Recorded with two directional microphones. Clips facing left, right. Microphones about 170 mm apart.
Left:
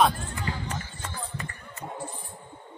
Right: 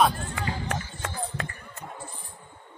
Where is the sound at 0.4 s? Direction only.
75° right (ahead or behind).